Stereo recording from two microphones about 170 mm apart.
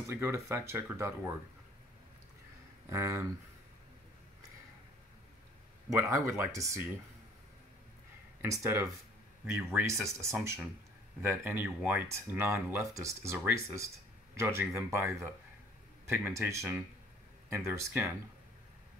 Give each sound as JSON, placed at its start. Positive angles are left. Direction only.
{"t": 0.1, "sound": "speech", "side_deg": -15}
{"t": 2.9, "sound": "speech", "side_deg": -15}
{"t": 5.9, "sound": "speech", "side_deg": -15}
{"t": 8.4, "sound": "speech", "side_deg": -15}